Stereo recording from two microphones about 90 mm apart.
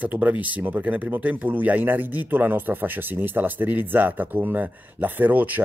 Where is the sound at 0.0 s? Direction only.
20° right (ahead or behind).